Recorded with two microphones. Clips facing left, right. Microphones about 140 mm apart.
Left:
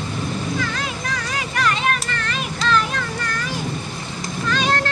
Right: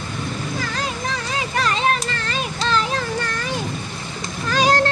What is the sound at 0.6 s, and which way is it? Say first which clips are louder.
Children playing: even; 35° right (ahead or behind).